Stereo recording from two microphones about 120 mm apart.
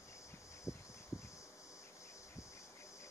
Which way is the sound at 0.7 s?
25° left (ahead or behind).